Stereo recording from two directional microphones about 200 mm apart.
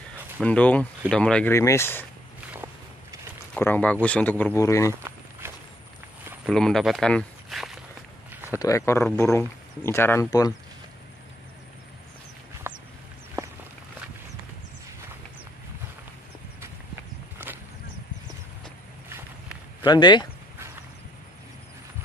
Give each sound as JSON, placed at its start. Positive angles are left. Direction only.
{"t": 0.4, "sound": "speech", "side_deg": 5}
{"t": 2.5, "sound": "walk", "side_deg": -10}
{"t": 3.5, "sound": "speech", "side_deg": 10}
{"t": 6.4, "sound": "speech", "side_deg": 0}
{"t": 8.5, "sound": "speech", "side_deg": 15}
{"t": 12.7, "sound": "a sound", "side_deg": -10}
{"t": 19.0, "sound": "walk", "side_deg": -10}
{"t": 19.8, "sound": "speech", "side_deg": 20}